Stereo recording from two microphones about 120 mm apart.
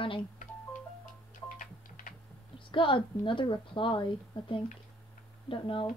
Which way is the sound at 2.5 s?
45° left (ahead or behind).